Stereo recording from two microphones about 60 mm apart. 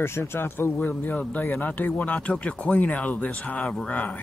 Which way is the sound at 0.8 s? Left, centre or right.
Left.